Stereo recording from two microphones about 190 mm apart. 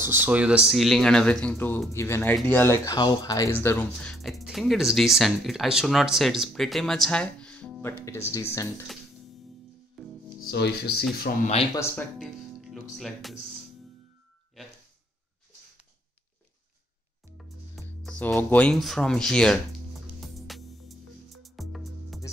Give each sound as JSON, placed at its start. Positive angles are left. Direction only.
{"t": 0.0, "sound": "speech", "side_deg": -10}
{"t": 10.0, "sound": "music", "side_deg": 0}
{"t": 10.4, "sound": "speech", "side_deg": 60}
{"t": 11.3, "sound": "speech", "side_deg": 45}
{"t": 12.2, "sound": "music", "side_deg": 0}
{"t": 12.9, "sound": "speech", "side_deg": 0}
{"t": 17.8, "sound": "music", "side_deg": 5}